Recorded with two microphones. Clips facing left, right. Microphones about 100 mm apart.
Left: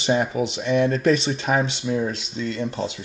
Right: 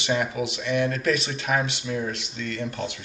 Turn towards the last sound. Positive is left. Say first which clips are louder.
# left 4 dB
turn(degrees=25)  # may be behind; listen again after turning